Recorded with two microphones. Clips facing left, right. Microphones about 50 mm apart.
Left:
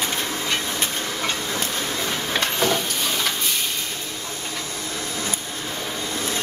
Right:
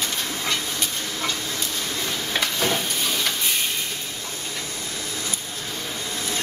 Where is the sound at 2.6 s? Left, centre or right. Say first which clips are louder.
Left 2 dB; centre.